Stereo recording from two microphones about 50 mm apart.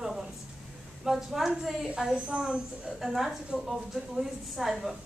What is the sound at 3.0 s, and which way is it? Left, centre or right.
A woman's voice, centre.